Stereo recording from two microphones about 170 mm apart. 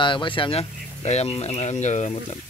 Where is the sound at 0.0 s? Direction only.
30° left (ahead or behind).